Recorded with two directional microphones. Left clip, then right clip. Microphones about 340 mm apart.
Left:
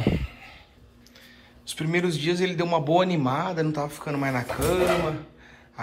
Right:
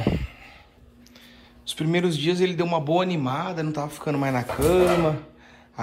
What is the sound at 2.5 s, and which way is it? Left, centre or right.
A man's voice, centre.